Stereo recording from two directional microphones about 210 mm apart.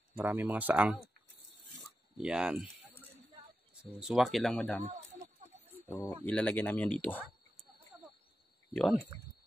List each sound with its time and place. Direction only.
0.2 s speech: 10° right (ahead or behind)
2.1 s speech: 5° right (ahead or behind)
4.0 s speech: centre (ahead or behind)
5.9 s speech: 15° left (ahead or behind)